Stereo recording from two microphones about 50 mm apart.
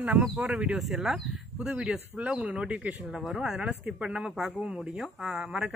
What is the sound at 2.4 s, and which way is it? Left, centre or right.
Speech, right.